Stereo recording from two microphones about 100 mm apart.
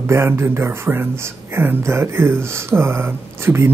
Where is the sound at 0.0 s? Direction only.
25° right (ahead or behind).